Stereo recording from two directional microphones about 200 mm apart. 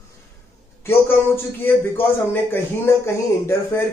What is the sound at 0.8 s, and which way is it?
A man's voice, 10° left (ahead or behind).